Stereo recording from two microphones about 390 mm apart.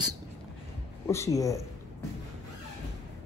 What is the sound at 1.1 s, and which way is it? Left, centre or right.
Speech, centre.